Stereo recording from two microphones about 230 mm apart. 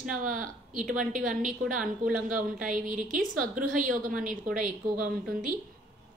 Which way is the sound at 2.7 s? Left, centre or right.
Right.